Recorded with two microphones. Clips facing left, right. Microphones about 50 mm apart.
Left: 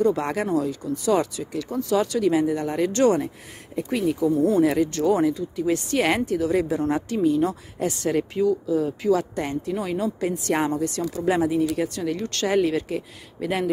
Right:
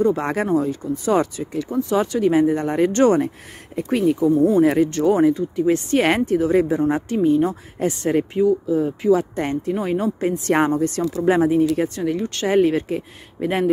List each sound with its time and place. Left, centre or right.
0.0 s speech: right
1.4 s speech: right
4.3 s speech: right
4.7 s speech: right
6.6 s speech: centre
9.4 s speech: right
12.0 s speech: centre
12.5 s speech: right